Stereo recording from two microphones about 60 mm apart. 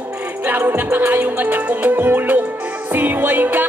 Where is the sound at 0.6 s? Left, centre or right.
Right.